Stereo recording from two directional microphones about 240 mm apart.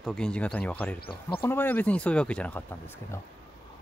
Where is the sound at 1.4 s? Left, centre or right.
Centre.